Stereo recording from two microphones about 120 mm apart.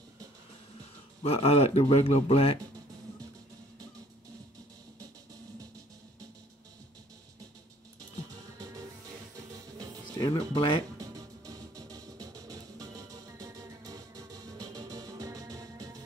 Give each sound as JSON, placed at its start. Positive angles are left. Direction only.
{"t": 1.2, "sound": "a man's voice", "side_deg": 55}
{"t": 10.2, "sound": "speech", "side_deg": 45}
{"t": 11.0, "sound": "music", "side_deg": -30}